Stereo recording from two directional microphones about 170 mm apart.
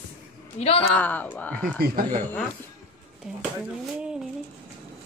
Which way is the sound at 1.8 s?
55° right (ahead or behind).